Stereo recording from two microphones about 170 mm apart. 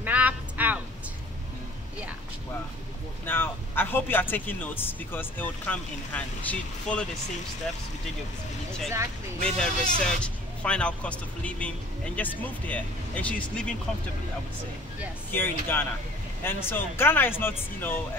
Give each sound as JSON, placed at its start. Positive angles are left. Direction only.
{"t": 0.0, "sound": "a sound", "side_deg": -10}
{"t": 3.3, "sound": "speech", "side_deg": 10}
{"t": 9.4, "sound": "speech", "side_deg": 5}
{"t": 15.3, "sound": "speech", "side_deg": 10}